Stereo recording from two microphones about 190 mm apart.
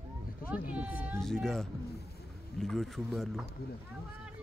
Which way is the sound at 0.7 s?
5° right (ahead or behind).